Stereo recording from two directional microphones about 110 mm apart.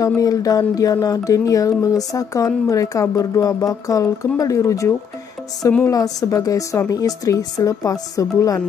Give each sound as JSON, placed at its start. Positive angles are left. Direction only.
{"t": 0.0, "sound": "speech", "side_deg": 35}